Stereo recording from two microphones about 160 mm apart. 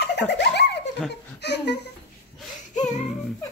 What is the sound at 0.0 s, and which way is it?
Giggle, 90° left.